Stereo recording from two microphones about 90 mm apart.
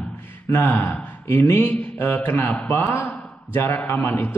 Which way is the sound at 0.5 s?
25° left (ahead or behind).